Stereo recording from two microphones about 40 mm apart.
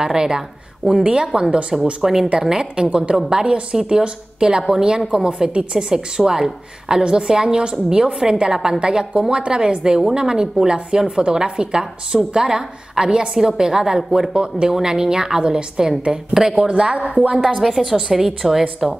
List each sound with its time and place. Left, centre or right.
0.0 s a woman's voice: centre
2.5 s a woman's voice: right
17.6 s a woman's voice: centre